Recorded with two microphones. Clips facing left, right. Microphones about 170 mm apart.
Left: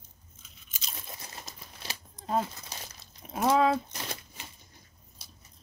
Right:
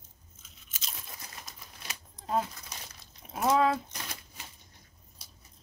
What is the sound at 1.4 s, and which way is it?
Crumpling, 30° left (ahead or behind).